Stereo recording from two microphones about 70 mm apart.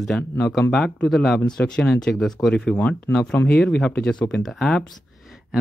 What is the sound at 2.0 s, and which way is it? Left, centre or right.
Speech, centre.